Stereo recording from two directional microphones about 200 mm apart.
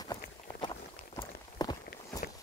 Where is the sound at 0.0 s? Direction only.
20° left (ahead or behind).